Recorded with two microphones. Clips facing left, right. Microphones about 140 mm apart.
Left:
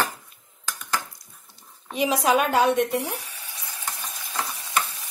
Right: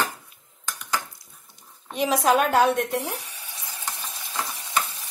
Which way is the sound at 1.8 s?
Centre (ahead or behind).